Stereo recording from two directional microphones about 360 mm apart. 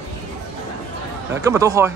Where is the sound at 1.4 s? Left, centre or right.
Centre.